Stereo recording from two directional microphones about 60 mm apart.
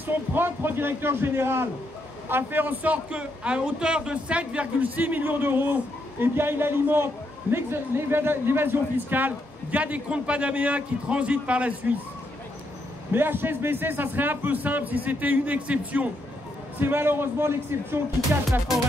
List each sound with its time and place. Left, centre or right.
0.0 s a man's voice: right
13.1 s a man's voice: right
16.8 s speech: right